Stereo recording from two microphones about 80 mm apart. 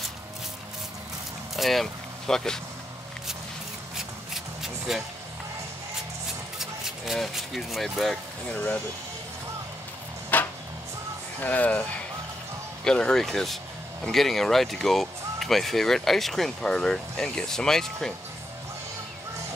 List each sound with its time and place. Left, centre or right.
1.6 s speech: centre
3.9 s rub: centre
6.6 s speech: centre
8.5 s speech: centre
10.3 s music: left
11.4 s speech: centre
12.8 s speech: centre